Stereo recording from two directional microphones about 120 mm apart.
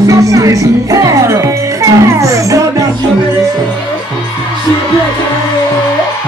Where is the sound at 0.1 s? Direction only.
30° right (ahead or behind).